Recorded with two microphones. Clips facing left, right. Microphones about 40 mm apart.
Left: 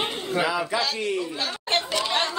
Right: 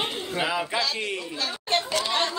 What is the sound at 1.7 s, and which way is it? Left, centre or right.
Chatter, left.